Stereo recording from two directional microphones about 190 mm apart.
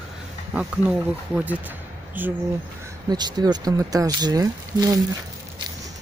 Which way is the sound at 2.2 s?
10° right (ahead or behind).